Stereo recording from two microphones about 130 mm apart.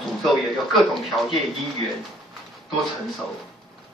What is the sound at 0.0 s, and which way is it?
A man's voice, centre (ahead or behind).